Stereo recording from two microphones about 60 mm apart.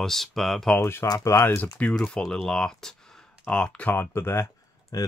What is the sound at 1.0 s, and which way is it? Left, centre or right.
Speech, left.